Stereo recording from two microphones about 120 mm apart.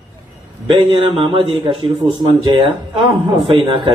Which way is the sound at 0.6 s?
45° right (ahead or behind).